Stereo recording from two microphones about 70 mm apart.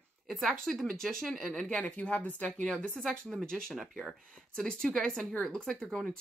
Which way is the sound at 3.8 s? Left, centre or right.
Centre.